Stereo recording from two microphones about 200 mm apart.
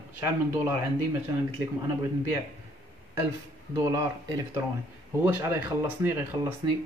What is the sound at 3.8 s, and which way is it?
Speech, 15° right (ahead or behind).